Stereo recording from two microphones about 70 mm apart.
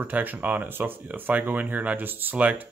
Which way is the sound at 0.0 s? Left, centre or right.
Right.